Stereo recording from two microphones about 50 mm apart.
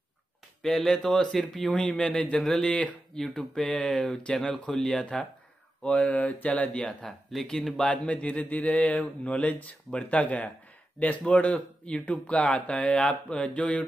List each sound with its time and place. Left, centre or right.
0.6 s speech: centre
1.7 s mantra: left
2.3 s speech: centre
2.7 s mantra: left
3.2 s speech: centre
4.7 s speech: centre
5.9 s mantra: left
7.1 s speech: centre
7.8 s mantra: left